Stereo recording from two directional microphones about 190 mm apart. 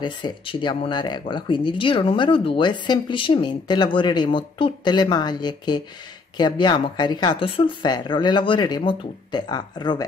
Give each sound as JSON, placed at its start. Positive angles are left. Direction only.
{"t": 0.0, "sound": "speech", "side_deg": 25}